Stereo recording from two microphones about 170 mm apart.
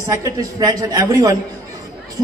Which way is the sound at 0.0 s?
20° right (ahead or behind).